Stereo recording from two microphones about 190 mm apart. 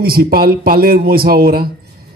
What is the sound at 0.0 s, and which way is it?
A man's voice, 50° right (ahead or behind).